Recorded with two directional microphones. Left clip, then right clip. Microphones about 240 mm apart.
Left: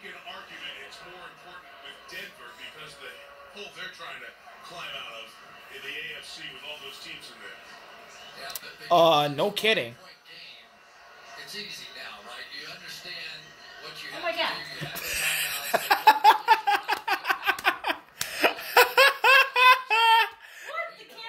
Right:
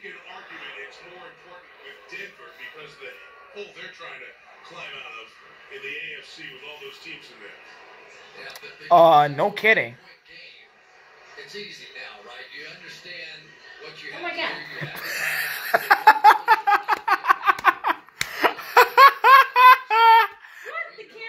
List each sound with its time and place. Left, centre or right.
8.5 s speech: centre
15.0 s a sound: centre
18.3 s laughter: centre